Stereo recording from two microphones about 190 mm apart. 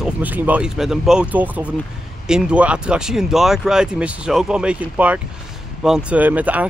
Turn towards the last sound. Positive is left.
turn(degrees=-10)  # may be behind; listen again after turning